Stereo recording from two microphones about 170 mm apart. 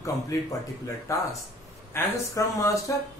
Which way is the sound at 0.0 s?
20° left (ahead or behind).